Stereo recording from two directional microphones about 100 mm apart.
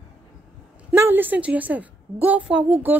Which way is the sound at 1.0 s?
20° right (ahead or behind).